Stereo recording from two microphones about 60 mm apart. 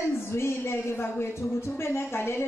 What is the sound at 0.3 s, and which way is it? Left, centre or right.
A woman's voice, left.